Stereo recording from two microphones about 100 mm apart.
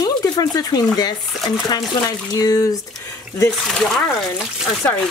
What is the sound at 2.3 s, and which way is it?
Speech, 40° left (ahead or behind).